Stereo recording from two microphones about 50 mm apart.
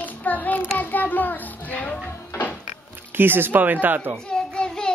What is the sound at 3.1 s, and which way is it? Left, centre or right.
Speech, right.